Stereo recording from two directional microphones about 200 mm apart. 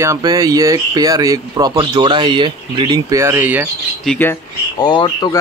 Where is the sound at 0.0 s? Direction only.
15° right (ahead or behind).